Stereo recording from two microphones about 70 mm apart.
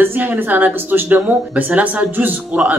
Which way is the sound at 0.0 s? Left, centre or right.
Right.